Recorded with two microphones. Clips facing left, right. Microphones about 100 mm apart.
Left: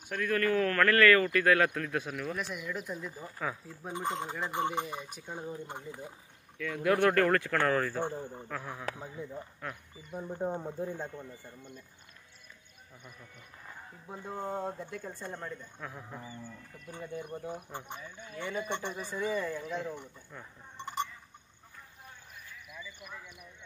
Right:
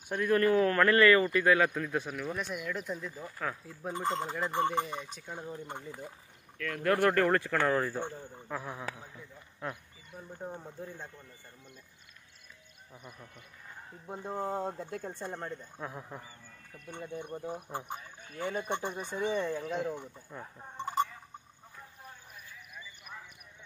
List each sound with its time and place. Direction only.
0.1 s speech: 25° right (ahead or behind); by 7.0 s 5° left (ahead or behind)
7.0 s speech: 10° right (ahead or behind)
8.1 s speech: 25° left (ahead or behind)
8.5 s speech: 10° right (ahead or behind)
10.1 s speech: 30° left (ahead or behind)
14.0 s speech: 25° right (ahead or behind)
14.4 s speech: 5° right (ahead or behind)
14.8 s speech: 35° right (ahead or behind)
15.9 s speech: 15° right (ahead or behind)
16.7 s speech: 35° right (ahead or behind)
17.4 s speech: 5° right (ahead or behind)
18.4 s speech: 45° right (ahead or behind)
18.9 s speech: 20° right (ahead or behind)
19.8 s speech: 15° right (ahead or behind)